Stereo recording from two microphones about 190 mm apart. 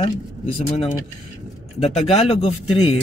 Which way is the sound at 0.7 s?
30° left (ahead or behind).